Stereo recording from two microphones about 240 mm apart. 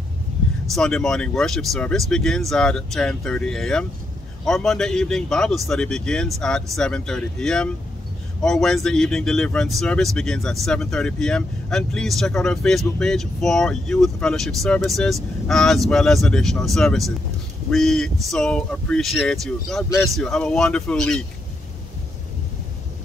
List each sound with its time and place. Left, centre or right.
0.7 s speech: centre